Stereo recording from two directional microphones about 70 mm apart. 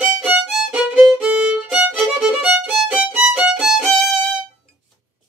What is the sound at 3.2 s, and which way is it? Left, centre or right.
Violin, centre.